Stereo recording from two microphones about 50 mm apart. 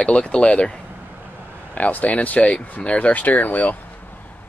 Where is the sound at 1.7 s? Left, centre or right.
Left.